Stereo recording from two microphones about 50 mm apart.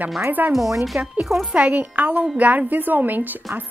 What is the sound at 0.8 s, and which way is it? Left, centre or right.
Speech, centre.